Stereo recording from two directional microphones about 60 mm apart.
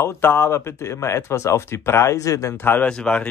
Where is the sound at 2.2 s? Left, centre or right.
Left.